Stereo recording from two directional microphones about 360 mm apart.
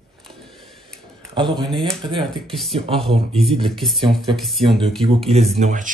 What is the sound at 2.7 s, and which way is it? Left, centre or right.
Speech, centre.